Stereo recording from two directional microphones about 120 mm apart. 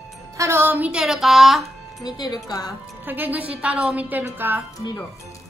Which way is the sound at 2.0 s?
35° left (ahead or behind).